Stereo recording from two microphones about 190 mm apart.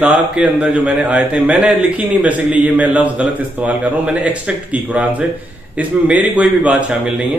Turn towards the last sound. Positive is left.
turn(degrees=-5)  # may be behind; listen again after turning